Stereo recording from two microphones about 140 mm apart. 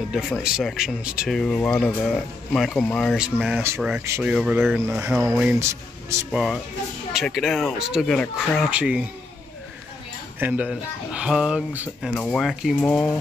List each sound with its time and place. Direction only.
0.1 s speech: 5° right (ahead or behind)
1.4 s speech: 5° left (ahead or behind)
3.2 s speech: 5° right (ahead or behind)
4.8 s speech: 15° right (ahead or behind)
6.3 s speech: centre (ahead or behind)
8.6 s speech: 5° right (ahead or behind)
10.4 s speech: 10° right (ahead or behind)
12.1 s speech: 5° left (ahead or behind)